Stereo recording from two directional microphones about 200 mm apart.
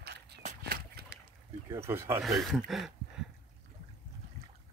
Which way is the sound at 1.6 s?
15° right (ahead or behind).